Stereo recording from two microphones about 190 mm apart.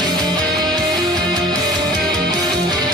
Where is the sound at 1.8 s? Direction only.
Centre (ahead or behind).